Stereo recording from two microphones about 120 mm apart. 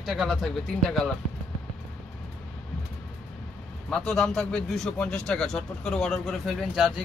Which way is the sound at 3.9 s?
5° left (ahead or behind).